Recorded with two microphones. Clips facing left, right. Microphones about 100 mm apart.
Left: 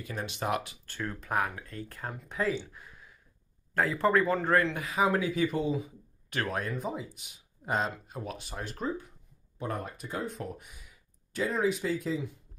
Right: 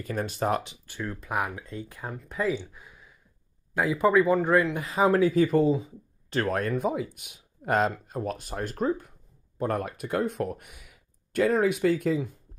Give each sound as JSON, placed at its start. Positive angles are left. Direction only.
{"t": 0.0, "sound": "speech", "side_deg": -45}
{"t": 0.8, "sound": "speech", "side_deg": -5}
{"t": 1.3, "sound": "speech", "side_deg": -15}
{"t": 4.8, "sound": "speech", "side_deg": -30}
{"t": 6.8, "sound": "speech", "side_deg": -65}